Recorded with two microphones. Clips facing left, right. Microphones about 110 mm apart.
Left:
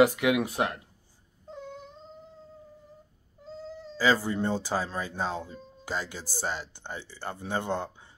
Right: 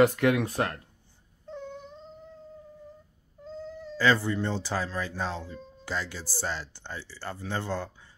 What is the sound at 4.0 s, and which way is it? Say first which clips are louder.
Speech: even; 10° left (ahead or behind).